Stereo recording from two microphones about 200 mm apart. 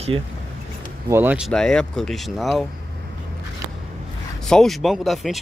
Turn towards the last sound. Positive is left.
turn(degrees=0)  # may be behind; listen again after turning